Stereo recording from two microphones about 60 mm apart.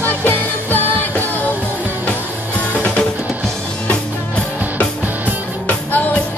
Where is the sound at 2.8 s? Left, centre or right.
Centre.